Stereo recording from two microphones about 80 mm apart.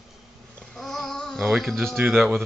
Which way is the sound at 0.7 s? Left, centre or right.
Centre.